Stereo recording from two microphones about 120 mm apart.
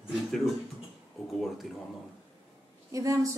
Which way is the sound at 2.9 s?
30° right (ahead or behind).